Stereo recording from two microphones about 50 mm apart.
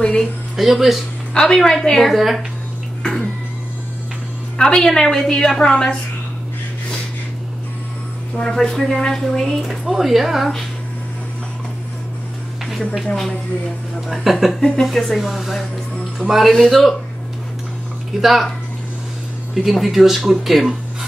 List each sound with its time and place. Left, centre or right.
0.0 s speech: centre
0.6 s speech: centre
1.3 s a woman's voice: centre
2.1 s speech: centre
3.0 s cat: centre
4.6 s a woman's voice: centre
8.5 s a woman's voice: centre
9.6 s speech: centre
13.0 s a woman's voice: centre
14.0 s speech: centre
18.2 s speech: centre
19.5 s speech: centre